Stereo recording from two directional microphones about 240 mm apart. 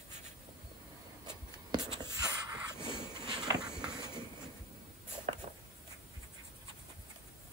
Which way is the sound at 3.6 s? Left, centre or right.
Centre.